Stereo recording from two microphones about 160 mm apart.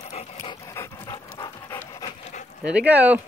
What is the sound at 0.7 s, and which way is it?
Pant, 20° left (ahead or behind).